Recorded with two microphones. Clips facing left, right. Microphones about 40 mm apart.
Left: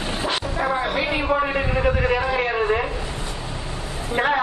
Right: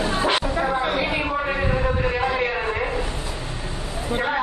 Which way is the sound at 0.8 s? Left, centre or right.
Centre.